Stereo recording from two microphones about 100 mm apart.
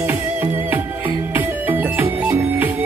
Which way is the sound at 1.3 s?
20° right (ahead or behind).